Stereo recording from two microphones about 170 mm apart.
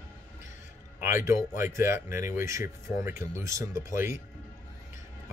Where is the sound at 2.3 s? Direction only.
15° right (ahead or behind).